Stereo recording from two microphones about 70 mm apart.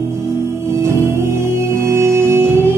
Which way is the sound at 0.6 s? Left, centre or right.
Right.